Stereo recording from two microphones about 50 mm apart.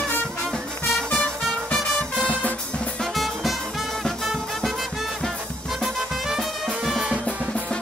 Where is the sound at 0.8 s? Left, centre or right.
Centre.